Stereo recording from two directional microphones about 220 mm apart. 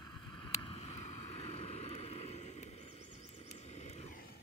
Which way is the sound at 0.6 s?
25° left (ahead or behind).